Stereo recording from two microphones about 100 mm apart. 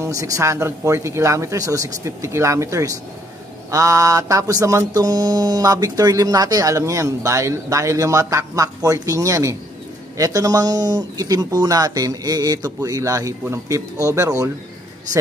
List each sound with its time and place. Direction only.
0.0 s mantra: 35° right (ahead or behind)